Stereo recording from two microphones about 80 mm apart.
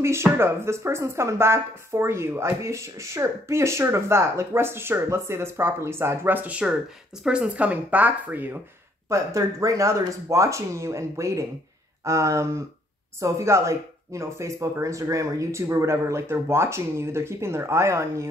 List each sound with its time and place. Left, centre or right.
0.0 s speech: right
9.1 s speech: right